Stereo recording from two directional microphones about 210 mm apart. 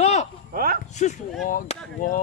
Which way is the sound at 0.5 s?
45° right (ahead or behind).